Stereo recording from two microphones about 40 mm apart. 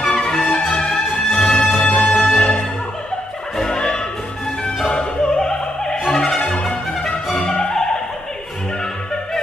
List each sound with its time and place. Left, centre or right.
0.0 s music: centre
3.7 s music: left
4.8 s opera: left
6.1 s music: centre
6.4 s music: left